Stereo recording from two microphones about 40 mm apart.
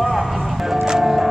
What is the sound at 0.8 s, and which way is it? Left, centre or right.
Music, centre.